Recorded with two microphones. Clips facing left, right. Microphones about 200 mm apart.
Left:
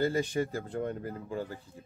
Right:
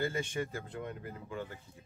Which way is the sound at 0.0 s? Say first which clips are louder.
Left 6 dB; 35° left (ahead or behind).